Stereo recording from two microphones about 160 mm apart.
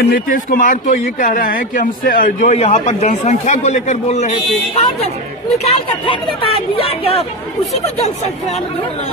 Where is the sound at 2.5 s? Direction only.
45° left (ahead or behind).